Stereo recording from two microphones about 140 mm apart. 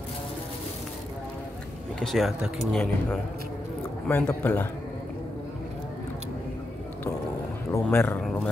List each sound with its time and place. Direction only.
2.0 s a man's voice: centre (ahead or behind)
7.7 s a man's voice: 15° left (ahead or behind)